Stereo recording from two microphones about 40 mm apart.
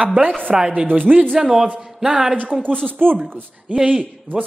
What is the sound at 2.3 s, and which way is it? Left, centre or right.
Speech, right.